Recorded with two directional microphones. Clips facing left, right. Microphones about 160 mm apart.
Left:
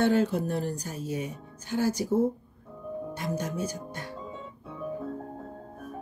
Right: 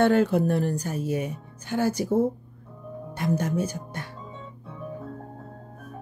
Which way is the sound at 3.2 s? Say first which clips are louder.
Right 7 dB; 60° right (ahead or behind).